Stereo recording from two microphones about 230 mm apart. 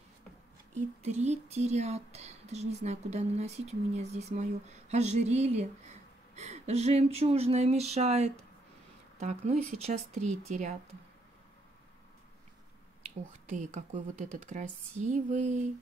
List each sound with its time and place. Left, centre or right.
0.7 s speech: right
13.5 s speech: right